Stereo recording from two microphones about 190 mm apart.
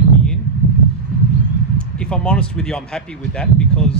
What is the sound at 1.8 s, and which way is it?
Speech, 5° left (ahead or behind).